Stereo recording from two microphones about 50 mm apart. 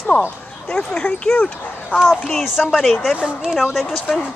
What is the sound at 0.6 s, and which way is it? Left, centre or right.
Speech, left.